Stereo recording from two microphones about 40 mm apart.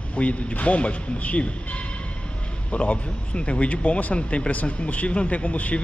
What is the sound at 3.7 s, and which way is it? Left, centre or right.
A man's voice, left.